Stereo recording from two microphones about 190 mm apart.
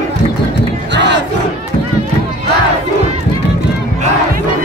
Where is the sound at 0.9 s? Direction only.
65° right (ahead or behind).